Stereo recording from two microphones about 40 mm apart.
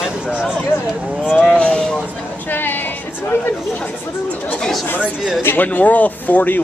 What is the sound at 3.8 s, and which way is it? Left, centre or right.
Speech, left.